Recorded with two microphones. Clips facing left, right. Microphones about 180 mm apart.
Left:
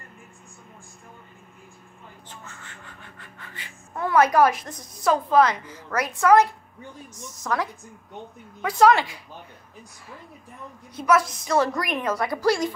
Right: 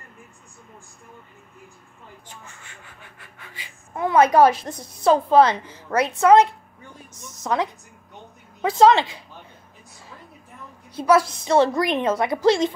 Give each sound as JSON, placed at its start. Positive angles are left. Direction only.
{"t": 2.2, "sound": "speech", "side_deg": -10}
{"t": 11.0, "sound": "speech", "side_deg": -30}